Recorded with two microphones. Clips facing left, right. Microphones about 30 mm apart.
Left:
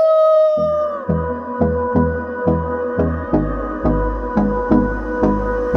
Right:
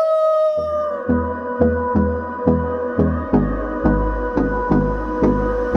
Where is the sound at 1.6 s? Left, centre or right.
Centre.